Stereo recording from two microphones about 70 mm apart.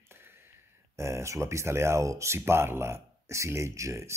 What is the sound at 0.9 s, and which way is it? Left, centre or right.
Speech, right.